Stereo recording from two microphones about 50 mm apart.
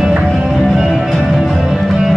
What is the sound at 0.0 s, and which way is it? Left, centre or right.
Music, centre.